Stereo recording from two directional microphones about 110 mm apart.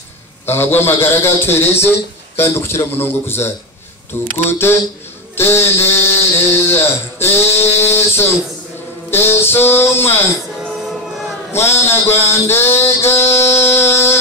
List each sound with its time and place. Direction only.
0.5 s a man's voice: 20° left (ahead or behind)
11.5 s a man's voice: 20° left (ahead or behind)